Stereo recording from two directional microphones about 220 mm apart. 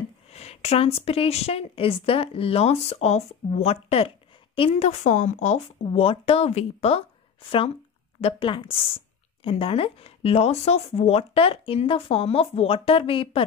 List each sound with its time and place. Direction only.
0.3 s speech: 30° left (ahead or behind)
8.2 s speech: 25° left (ahead or behind)